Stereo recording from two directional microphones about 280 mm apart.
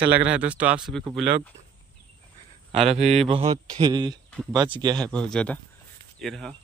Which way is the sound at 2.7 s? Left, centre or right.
Right.